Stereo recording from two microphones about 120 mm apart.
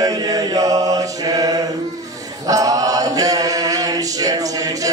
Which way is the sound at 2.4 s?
30° right (ahead or behind).